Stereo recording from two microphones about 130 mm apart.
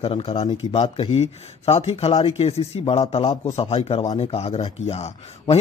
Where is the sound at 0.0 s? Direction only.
50° left (ahead or behind).